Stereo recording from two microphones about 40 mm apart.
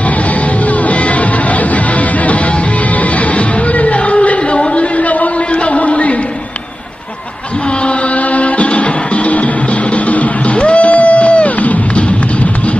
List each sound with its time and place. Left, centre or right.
0.8 s music: left
4.6 s a sound: left
7.8 s music: left